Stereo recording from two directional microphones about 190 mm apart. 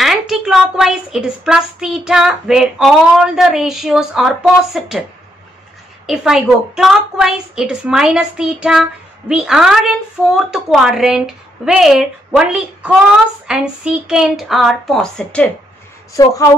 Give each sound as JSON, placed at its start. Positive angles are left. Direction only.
{"t": 0.0, "sound": "a woman's voice", "side_deg": 0}
{"t": 6.0, "sound": "a woman's voice", "side_deg": 0}
{"t": 16.1, "sound": "a woman's voice", "side_deg": 15}